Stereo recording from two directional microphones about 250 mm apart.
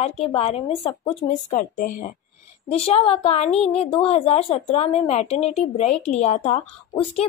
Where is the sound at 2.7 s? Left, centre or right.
Left.